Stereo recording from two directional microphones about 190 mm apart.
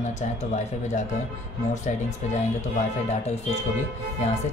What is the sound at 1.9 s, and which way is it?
Speech, 40° left (ahead or behind).